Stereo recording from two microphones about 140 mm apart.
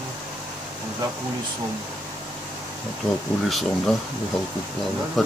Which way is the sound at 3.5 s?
Centre (ahead or behind).